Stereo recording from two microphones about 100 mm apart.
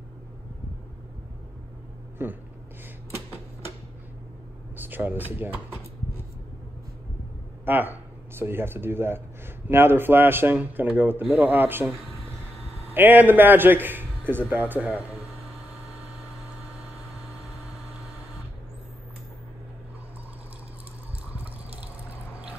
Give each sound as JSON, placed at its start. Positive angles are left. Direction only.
{"t": 2.2, "sound": "speech", "side_deg": -25}
{"t": 4.7, "sound": "speech", "side_deg": -20}
{"t": 7.6, "sound": "speech", "side_deg": -20}
{"t": 12.9, "sound": "speech", "side_deg": -20}
{"t": 21.4, "sound": "water", "side_deg": -15}